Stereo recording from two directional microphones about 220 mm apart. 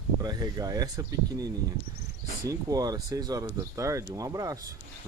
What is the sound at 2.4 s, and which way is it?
Speech, 15° right (ahead or behind).